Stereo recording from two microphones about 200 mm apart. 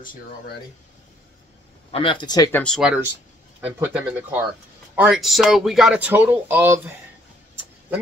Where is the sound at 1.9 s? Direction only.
25° left (ahead or behind); by 2.7 s 10° left (ahead or behind).